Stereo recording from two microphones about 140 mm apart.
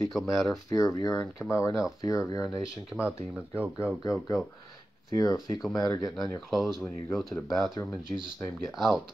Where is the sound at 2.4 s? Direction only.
5° right (ahead or behind).